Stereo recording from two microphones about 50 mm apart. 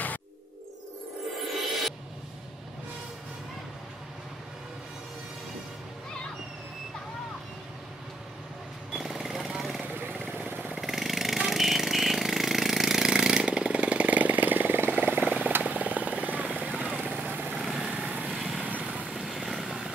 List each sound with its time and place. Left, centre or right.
1.5 s music: centre
8.9 s jackhammer: centre
10.3 s vehicle: right
10.7 s jackhammer: centre
13.5 s vehicle: right
17.6 s vehicle: centre
17.9 s vehicle: right
19.1 s vehicle: centre